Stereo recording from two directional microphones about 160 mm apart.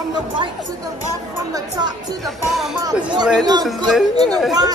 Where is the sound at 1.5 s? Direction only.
25° right (ahead or behind).